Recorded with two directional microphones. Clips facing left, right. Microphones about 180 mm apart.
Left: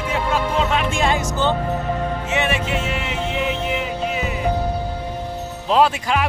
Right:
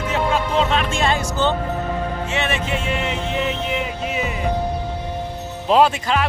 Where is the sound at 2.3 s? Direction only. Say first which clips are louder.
Left 3 dB; 10° left (ahead or behind).